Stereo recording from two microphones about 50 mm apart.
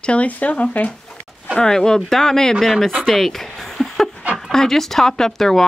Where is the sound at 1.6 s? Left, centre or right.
Centre.